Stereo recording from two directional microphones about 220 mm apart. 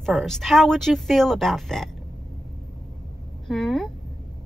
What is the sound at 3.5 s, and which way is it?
Speech, centre (ahead or behind).